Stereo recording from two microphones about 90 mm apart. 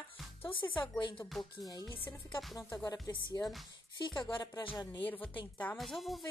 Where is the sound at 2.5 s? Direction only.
45° left (ahead or behind).